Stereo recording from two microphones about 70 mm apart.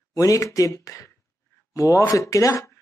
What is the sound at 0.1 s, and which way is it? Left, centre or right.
Speech, left.